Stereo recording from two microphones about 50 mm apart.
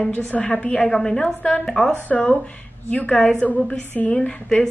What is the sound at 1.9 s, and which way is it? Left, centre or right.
Speech, left.